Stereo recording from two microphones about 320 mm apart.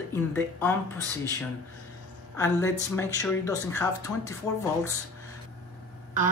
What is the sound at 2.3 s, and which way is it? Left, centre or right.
Speech, centre.